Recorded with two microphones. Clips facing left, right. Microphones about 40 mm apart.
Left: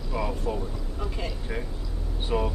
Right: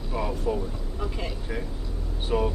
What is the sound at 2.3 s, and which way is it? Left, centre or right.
Speech, centre.